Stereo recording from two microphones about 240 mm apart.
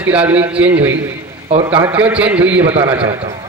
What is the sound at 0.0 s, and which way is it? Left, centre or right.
A man's voice, centre.